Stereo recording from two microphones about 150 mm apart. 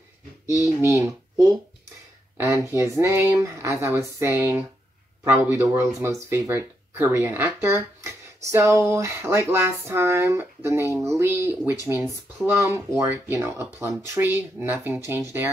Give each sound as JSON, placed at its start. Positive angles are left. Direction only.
{"t": 0.8, "sound": "speech", "side_deg": -20}
{"t": 2.3, "sound": "a sound", "side_deg": -20}
{"t": 3.0, "sound": "speech", "side_deg": -15}
{"t": 12.6, "sound": "speech", "side_deg": -20}